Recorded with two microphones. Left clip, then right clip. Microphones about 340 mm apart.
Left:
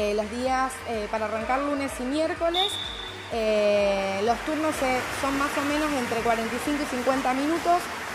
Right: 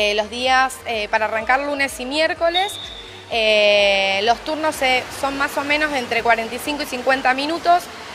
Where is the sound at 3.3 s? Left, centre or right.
Right.